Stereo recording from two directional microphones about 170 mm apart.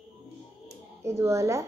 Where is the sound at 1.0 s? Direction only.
15° right (ahead or behind).